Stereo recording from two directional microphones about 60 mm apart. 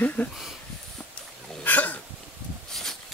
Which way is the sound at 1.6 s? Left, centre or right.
Left.